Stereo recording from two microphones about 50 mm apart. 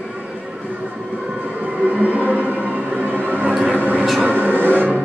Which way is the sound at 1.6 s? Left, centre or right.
Right.